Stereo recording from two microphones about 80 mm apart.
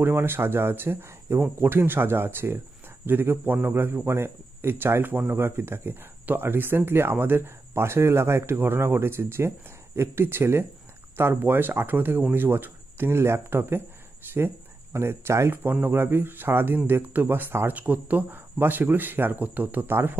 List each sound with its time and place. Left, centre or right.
0.0 s a man's voice: right